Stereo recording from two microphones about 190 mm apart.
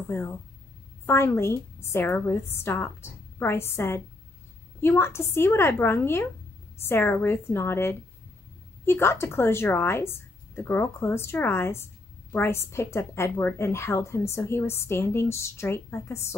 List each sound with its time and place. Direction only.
0.1 s a woman's voice: 10° left (ahead or behind)